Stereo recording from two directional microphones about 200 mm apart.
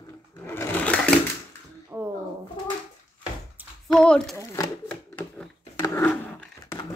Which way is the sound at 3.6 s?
10° right (ahead or behind).